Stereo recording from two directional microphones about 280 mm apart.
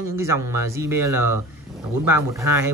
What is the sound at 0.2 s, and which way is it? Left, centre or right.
Speech, centre.